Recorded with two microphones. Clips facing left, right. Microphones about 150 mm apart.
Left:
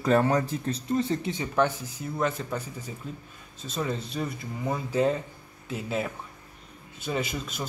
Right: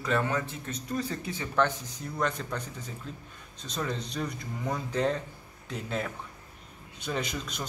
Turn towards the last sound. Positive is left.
turn(degrees=5)  # may be behind; listen again after turning